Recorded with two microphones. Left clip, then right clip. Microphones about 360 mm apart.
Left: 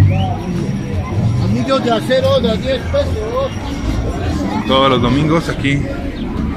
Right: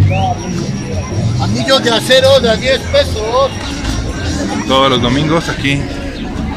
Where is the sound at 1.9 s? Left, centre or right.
Right.